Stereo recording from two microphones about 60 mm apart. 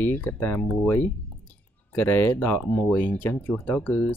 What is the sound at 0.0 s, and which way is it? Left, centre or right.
Speech, left.